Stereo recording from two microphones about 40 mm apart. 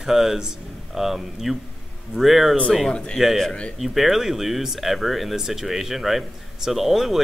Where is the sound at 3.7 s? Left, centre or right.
Centre.